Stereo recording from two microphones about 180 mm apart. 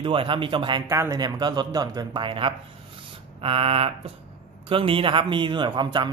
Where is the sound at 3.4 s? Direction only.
30° right (ahead or behind).